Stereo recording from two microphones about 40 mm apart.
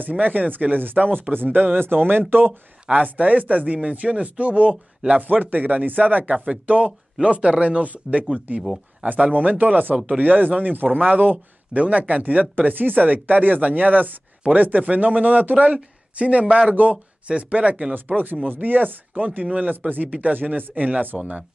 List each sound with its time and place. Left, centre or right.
0.0 s speech: right
2.9 s speech: right
5.2 s speech: right
9.9 s speech: right
10.2 s speech: right
17.9 s speech: right